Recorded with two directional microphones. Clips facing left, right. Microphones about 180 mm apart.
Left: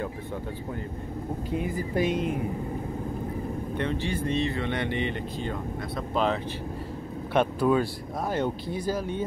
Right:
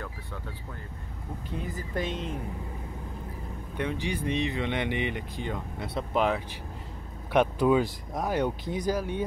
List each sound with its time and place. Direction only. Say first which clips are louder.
1.5 s speech: left 5 dB; 10° left (ahead or behind)
3.7 s speech: even; 10° right (ahead or behind)
7.3 s speech: even; 15° right (ahead or behind)